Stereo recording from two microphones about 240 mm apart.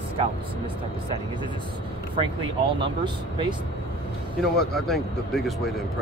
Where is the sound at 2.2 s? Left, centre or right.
Right.